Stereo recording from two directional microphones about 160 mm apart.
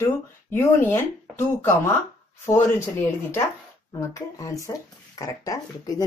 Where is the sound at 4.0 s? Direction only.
20° left (ahead or behind).